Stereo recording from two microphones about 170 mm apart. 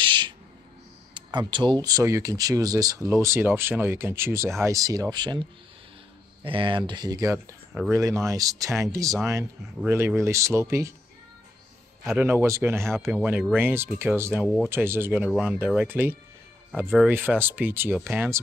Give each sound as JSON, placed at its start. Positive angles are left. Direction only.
{"t": 0.0, "sound": "owl", "side_deg": -25}
{"t": 1.1, "sound": "speech", "side_deg": -25}
{"t": 6.4, "sound": "speech", "side_deg": -30}
{"t": 12.2, "sound": "speech", "side_deg": -15}
{"t": 14.4, "sound": "speech", "side_deg": 5}
{"t": 14.7, "sound": "speech", "side_deg": -15}